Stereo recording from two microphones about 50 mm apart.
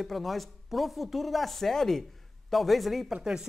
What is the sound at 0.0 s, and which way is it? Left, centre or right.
Speech, centre.